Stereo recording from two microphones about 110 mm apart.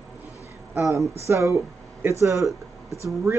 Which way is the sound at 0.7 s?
30° right (ahead or behind).